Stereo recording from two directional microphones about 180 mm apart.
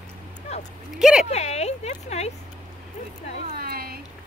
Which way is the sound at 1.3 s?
35° left (ahead or behind).